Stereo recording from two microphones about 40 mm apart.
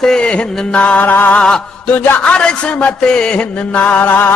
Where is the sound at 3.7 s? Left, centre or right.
Left.